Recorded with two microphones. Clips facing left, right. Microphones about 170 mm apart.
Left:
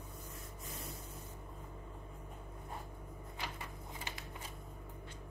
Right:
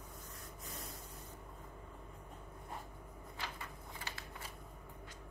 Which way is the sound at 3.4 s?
15° left (ahead or behind).